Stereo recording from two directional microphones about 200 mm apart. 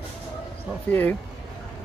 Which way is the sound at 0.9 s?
10° left (ahead or behind).